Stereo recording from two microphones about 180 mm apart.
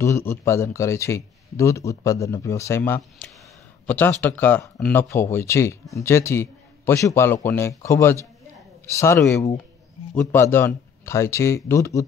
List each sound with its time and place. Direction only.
0.0 s speech: 15° left (ahead or behind)
5.1 s speech: 15° left (ahead or behind)